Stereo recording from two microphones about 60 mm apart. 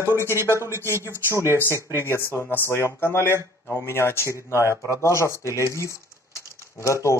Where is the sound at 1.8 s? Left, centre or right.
Left.